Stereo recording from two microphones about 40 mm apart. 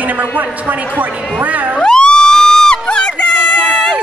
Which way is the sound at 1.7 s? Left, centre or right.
Centre.